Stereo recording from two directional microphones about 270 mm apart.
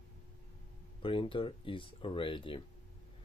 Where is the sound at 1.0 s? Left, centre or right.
Centre.